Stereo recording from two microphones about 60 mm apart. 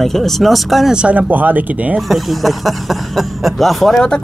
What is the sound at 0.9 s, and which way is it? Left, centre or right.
Speech, centre.